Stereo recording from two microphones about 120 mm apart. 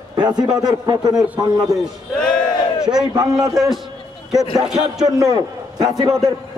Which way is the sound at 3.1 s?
30° right (ahead or behind).